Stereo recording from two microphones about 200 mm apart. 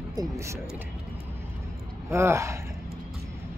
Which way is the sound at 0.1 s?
15° right (ahead or behind).